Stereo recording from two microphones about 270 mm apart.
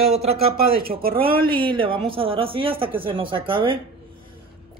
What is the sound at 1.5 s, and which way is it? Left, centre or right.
Speech, centre.